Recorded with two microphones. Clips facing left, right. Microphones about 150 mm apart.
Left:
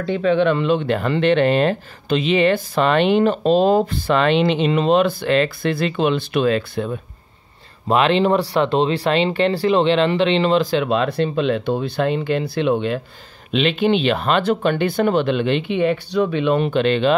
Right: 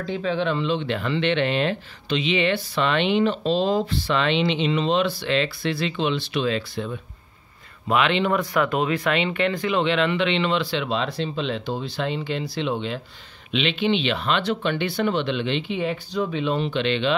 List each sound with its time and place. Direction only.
0.0 s speech: 65° left (ahead or behind)
7.9 s speech: 35° left (ahead or behind)